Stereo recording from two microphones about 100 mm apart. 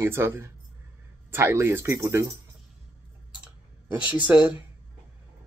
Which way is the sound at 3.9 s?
15° right (ahead or behind).